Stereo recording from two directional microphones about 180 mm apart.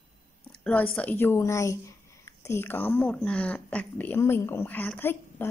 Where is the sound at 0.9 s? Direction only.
10° left (ahead or behind).